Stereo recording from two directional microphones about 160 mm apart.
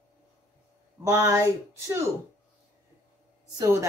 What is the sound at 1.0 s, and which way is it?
Speech, 20° right (ahead or behind).